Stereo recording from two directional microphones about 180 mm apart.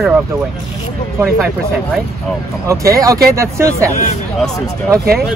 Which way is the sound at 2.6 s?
20° right (ahead or behind).